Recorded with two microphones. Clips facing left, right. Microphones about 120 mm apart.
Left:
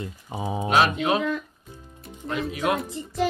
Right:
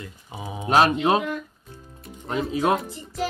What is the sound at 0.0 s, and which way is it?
Speech, 30° left (ahead or behind).